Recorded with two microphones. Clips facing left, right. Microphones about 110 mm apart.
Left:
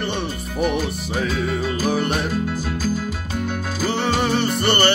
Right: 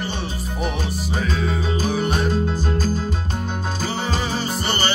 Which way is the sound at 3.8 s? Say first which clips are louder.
Left 6 dB; 65° left (ahead or behind).